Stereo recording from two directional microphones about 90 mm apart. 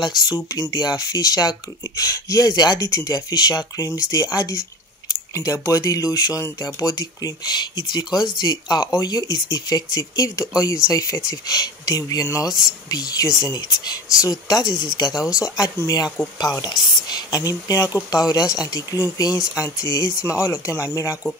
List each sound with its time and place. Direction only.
0.0 s speech: 45° left (ahead or behind)